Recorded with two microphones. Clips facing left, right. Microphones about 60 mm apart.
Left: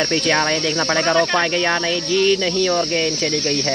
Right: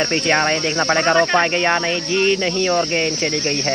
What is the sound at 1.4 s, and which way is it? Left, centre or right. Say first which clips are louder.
Speech: right 1 dB; right.